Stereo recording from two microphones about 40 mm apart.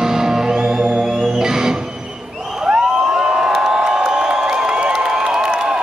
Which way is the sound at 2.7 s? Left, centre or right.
Centre.